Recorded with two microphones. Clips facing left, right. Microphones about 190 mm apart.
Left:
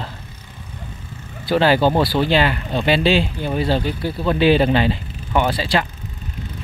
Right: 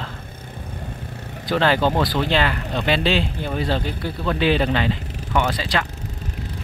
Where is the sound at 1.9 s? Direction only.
30° left (ahead or behind).